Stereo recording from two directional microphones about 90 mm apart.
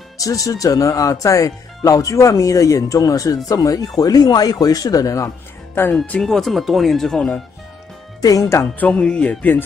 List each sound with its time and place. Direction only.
0.2 s speech: 40° left (ahead or behind)
6.0 s speech: 10° left (ahead or behind)
8.2 s speech: 40° left (ahead or behind)
8.7 s speech: 15° left (ahead or behind)